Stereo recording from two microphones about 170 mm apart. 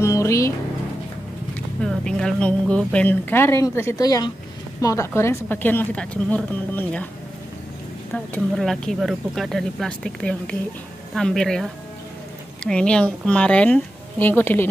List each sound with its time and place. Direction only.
0.0 s music: 15° left (ahead or behind)
1.8 s speech: 5° left (ahead or behind)
8.5 s speech: centre (ahead or behind)